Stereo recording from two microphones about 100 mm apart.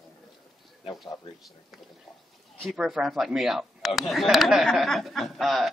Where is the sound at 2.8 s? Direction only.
5° right (ahead or behind).